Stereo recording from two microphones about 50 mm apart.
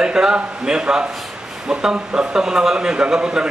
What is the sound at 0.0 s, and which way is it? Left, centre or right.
A man's voice, centre.